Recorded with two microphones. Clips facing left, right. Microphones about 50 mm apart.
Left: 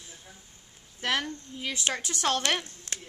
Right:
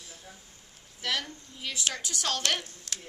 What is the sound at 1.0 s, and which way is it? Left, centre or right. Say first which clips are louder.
Speech: left 4 dB; left.